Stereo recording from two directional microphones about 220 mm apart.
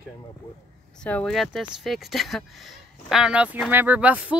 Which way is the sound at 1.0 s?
5° left (ahead or behind).